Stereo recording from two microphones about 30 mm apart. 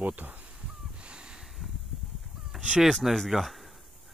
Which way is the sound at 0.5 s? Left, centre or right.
Right.